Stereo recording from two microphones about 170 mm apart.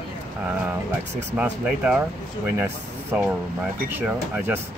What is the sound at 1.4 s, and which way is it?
Speech, 5° right (ahead or behind).